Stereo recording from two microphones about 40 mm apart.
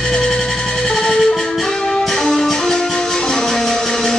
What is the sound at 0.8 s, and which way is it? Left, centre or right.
Music, centre.